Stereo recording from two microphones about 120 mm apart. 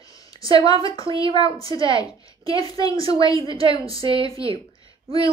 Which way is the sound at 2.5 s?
30° left (ahead or behind).